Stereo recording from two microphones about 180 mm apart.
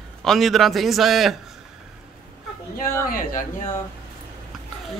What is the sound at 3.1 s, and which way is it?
Speech, 50° left (ahead or behind).